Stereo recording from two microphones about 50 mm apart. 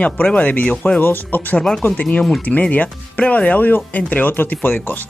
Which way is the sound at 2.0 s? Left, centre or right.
Left.